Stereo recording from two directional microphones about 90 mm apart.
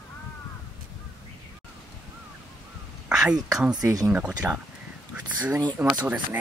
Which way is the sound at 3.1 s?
5° right (ahead or behind).